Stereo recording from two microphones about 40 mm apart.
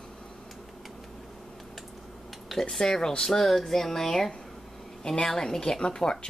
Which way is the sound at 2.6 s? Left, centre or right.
Centre.